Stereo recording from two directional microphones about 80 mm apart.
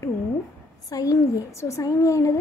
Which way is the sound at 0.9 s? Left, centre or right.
Left.